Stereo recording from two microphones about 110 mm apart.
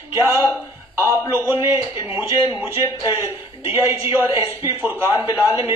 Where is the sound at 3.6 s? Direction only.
20° right (ahead or behind).